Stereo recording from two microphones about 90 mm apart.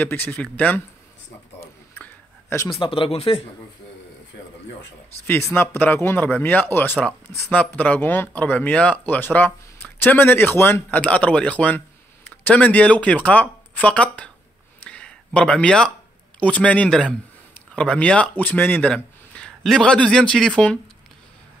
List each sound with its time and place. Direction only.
0.0 s speech: 20° left (ahead or behind)
2.7 s speech: 75° left (ahead or behind)
5.2 s speech: 25° left (ahead or behind)
11.0 s speech: 15° left (ahead or behind)
14.9 s a sound: 10° left (ahead or behind)
16.3 s speech: 15° left (ahead or behind)